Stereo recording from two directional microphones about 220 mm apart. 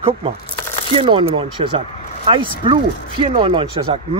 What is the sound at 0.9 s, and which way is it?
Speech, 25° right (ahead or behind).